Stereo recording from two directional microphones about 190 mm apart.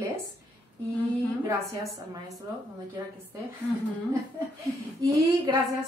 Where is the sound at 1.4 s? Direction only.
15° right (ahead or behind).